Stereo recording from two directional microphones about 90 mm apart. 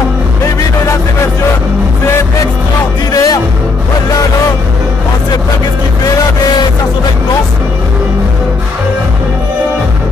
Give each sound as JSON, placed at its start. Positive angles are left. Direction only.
{"t": 3.1, "sound": "music", "side_deg": 45}